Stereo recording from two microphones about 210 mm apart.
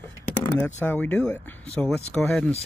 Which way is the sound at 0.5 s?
10° left (ahead or behind).